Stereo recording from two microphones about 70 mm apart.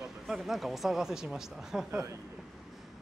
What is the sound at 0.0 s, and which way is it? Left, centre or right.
A woman's voice, centre.